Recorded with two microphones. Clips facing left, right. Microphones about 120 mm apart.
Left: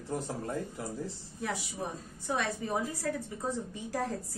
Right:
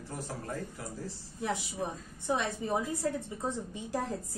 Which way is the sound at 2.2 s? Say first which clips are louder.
Right 1 dB; 20° right (ahead or behind).